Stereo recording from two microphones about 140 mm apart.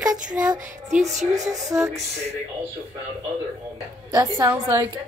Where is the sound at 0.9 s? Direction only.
55° right (ahead or behind).